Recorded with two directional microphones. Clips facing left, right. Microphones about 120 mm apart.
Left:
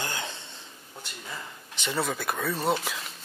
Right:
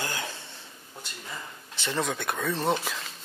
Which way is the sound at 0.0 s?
25° left (ahead or behind).